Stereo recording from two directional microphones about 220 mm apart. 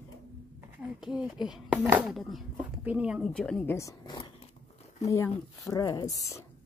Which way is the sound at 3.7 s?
15° left (ahead or behind).